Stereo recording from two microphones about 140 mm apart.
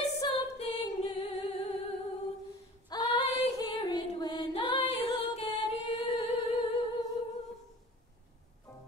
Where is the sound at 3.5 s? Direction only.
30° left (ahead or behind).